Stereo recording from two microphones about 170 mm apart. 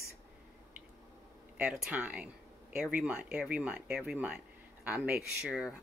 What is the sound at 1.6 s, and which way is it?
Speech, 10° right (ahead or behind).